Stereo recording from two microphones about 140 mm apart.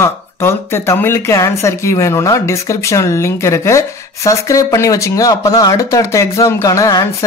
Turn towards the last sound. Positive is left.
turn(degrees=25)  # may be behind; listen again after turning